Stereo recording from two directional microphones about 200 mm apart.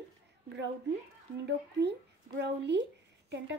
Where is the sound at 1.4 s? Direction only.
55° right (ahead or behind).